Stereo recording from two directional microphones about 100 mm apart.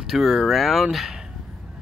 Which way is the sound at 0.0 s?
5° right (ahead or behind).